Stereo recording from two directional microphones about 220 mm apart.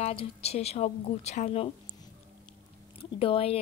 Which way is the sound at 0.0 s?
25° left (ahead or behind).